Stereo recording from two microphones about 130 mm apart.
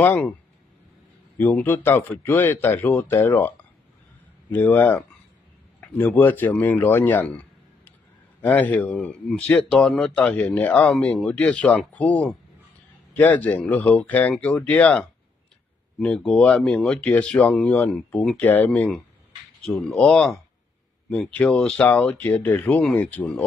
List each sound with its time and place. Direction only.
0.0 s speech: 10° left (ahead or behind)
1.4 s speech: 15° left (ahead or behind)
8.4 s speech: 10° left (ahead or behind)